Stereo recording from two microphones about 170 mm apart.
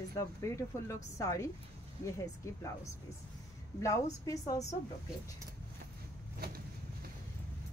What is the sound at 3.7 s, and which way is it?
Speech, 20° left (ahead or behind).